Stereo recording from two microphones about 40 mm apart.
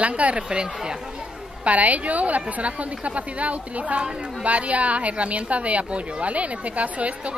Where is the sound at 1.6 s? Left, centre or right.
Right.